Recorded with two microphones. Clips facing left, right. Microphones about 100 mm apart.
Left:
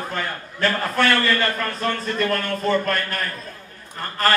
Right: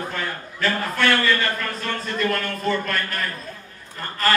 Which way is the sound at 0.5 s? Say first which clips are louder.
Left 3 dB; 40° left (ahead or behind).